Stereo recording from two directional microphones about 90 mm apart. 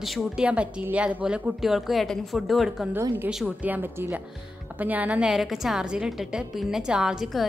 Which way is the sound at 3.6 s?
20° right (ahead or behind).